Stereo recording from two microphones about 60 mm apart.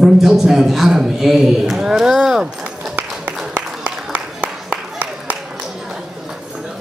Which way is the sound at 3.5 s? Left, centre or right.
Right.